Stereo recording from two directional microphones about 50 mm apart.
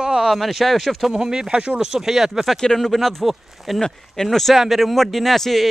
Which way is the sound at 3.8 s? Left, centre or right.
Centre.